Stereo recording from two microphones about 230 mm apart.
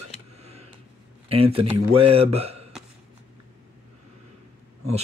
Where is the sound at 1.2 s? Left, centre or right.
Right.